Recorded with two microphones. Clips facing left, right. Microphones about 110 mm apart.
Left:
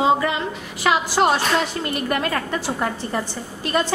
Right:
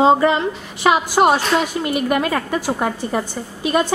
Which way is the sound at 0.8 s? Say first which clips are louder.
Right 4 dB; 15° right (ahead or behind).